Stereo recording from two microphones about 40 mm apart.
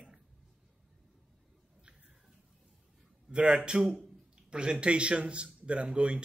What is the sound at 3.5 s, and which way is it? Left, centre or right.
Speech, right.